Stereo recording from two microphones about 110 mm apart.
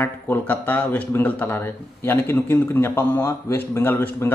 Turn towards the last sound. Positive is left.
turn(degrees=20)  # may be behind; listen again after turning